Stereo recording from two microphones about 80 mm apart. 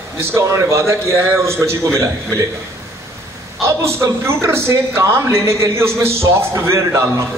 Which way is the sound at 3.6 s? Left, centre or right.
Right.